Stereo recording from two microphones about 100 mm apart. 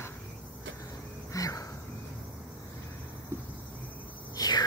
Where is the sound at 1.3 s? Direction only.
35° left (ahead or behind).